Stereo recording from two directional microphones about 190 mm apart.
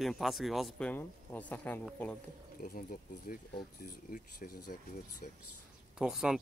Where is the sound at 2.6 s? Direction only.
50° left (ahead or behind).